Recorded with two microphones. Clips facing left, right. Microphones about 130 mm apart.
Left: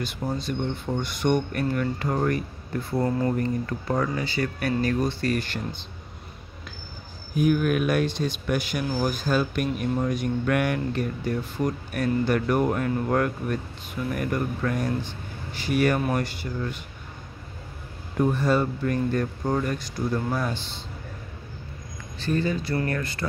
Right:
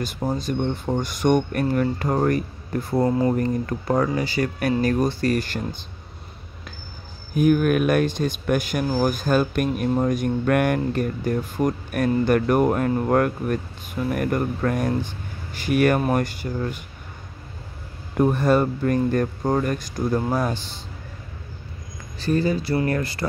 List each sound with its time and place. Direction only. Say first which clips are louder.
0.0 s speech: right 4 dB; 40° right (ahead or behind)
3.0 s speech: right 4 dB; 20° right (ahead or behind)
3.3 s speech: right 3 dB; 40° right (ahead or behind)
7.3 s speech: right 4 dB; 50° right (ahead or behind)
18.2 s speech: right 4 dB; 50° right (ahead or behind)
20.2 s speech: right 6 dB; 40° right (ahead or behind)
22.2 s speech: right 4 dB; 35° right (ahead or behind)